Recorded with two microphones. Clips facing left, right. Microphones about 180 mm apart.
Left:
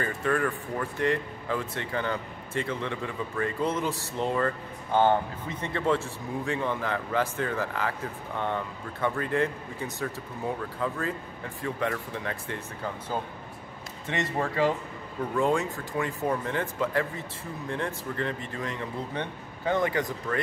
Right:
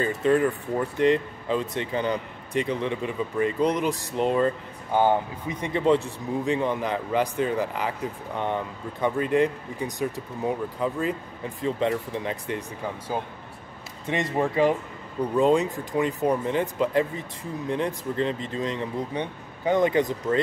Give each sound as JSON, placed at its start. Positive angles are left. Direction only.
{"t": 0.0, "sound": "speech", "side_deg": -20}